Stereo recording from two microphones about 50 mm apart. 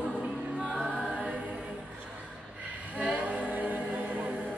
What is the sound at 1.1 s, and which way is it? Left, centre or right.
Choir, right.